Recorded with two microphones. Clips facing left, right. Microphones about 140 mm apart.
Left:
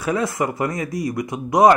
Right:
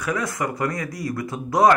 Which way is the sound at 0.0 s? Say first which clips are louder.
Left 4 dB; 25° left (ahead or behind).